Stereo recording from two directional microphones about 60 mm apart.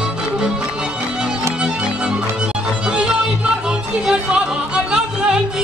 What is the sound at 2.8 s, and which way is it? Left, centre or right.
Music, centre.